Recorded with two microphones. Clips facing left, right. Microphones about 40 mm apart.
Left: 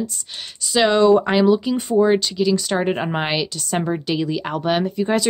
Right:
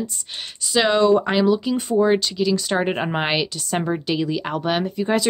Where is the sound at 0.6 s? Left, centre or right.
Centre.